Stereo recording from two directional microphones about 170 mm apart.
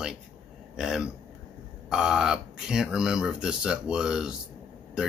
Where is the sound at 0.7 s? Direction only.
5° right (ahead or behind).